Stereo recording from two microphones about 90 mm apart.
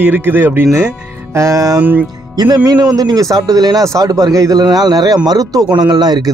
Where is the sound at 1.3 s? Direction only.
40° right (ahead or behind).